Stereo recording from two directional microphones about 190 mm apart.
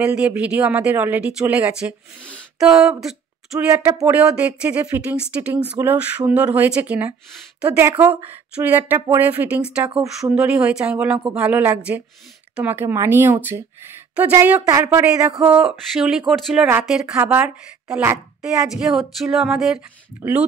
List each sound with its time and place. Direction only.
0.0 s a woman's voice: 5° right (ahead or behind)
2.2 s a sound: 5° left (ahead or behind)
3.5 s a woman's voice: 15° right (ahead or behind)
8.5 s a woman's voice: 10° right (ahead or behind)
9.8 s speech: 25° right (ahead or behind)
10.3 s a woman's voice: 5° right (ahead or behind)